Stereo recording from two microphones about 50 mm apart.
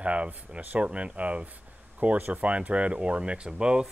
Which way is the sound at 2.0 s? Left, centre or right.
Right.